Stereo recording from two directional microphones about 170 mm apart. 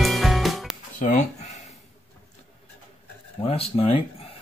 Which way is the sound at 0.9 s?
50° left (ahead or behind).